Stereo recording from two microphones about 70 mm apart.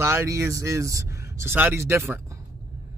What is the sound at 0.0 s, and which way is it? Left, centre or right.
Speech, right.